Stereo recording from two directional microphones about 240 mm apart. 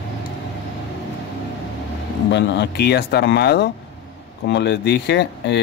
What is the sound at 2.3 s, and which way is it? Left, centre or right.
Speech, left.